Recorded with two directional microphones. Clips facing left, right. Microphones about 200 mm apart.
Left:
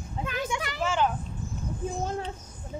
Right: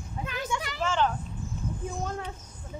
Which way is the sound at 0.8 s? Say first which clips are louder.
Left 1 dB; 10° left (ahead or behind).